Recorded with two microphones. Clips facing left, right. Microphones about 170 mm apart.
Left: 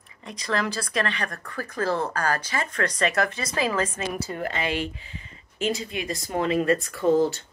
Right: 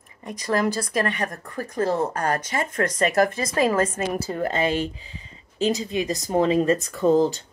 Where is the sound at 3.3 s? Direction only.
45° right (ahead or behind).